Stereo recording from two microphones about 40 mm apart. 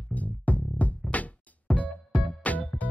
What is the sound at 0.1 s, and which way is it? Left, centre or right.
Music, left.